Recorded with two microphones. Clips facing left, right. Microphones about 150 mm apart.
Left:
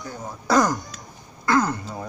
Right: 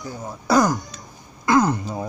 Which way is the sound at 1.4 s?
15° right (ahead or behind).